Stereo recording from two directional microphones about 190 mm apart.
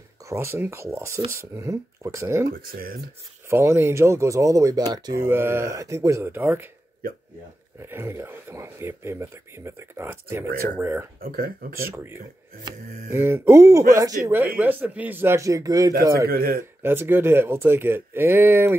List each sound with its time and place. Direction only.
0.3 s speech: 15° right (ahead or behind)
2.5 s speech: 50° right (ahead or behind)
3.4 s speech: 15° right (ahead or behind)
7.8 s speech: 15° right (ahead or behind)
11.1 s speech: 50° right (ahead or behind)
11.8 s speech: 15° right (ahead or behind)
16.3 s speech: 50° right (ahead or behind)
16.8 s speech: 10° right (ahead or behind)